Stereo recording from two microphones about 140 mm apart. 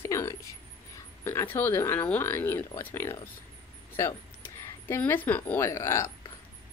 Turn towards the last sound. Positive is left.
turn(degrees=20)  # may be behind; listen again after turning